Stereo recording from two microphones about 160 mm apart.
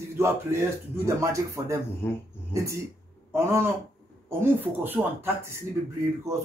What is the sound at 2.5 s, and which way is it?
A man's voice, 20° right (ahead or behind).